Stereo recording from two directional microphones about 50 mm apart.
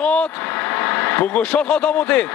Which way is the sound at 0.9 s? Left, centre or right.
Left.